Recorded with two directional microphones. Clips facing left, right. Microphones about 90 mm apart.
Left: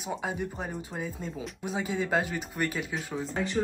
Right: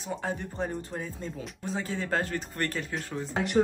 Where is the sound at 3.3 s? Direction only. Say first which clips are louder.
Right 5 dB; 70° right (ahead or behind).